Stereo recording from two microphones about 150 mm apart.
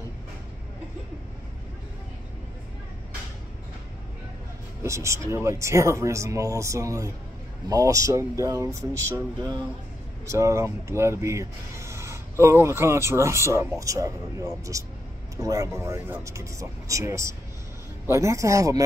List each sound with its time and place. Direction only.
4.8 s speech: 20° right (ahead or behind)